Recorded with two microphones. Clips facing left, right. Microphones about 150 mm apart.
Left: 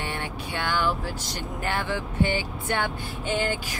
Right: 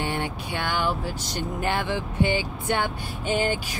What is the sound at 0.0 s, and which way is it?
Vehicle, 20° right (ahead or behind).